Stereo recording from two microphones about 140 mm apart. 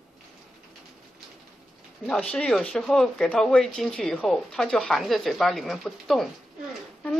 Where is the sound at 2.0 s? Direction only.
5° left (ahead or behind).